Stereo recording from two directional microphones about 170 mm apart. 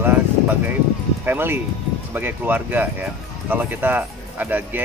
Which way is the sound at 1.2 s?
15° right (ahead or behind).